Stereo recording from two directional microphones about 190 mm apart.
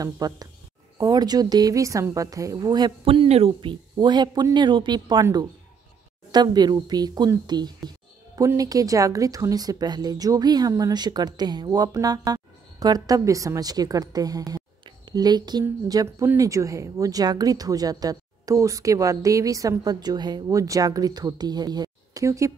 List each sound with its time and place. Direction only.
0.0 s speech: 20° right (ahead or behind)